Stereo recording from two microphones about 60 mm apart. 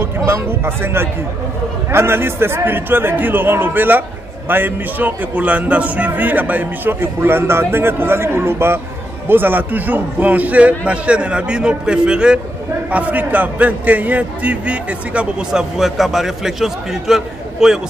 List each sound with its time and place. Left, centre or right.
0.0 s a man's voice: right; by 12.4 s centre
12.9 s a man's voice: right
15.5 s a man's voice: centre